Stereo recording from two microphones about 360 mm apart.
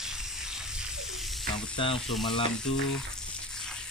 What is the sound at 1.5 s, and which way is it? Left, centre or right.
Speech, centre.